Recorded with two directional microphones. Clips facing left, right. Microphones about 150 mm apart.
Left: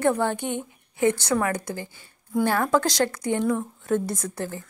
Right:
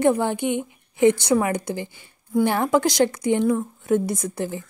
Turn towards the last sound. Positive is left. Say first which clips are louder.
# right 4 dB
turn(degrees=-15)  # may be behind; listen again after turning